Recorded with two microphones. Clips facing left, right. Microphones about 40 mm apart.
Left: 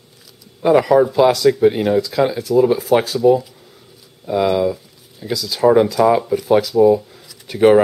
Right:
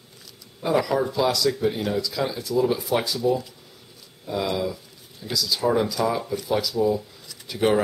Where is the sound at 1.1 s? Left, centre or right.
Left.